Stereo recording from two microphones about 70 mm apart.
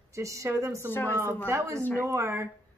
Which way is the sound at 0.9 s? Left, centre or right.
Left.